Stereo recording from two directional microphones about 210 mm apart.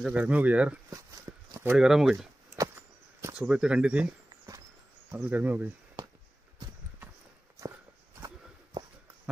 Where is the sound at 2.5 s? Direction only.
15° right (ahead or behind).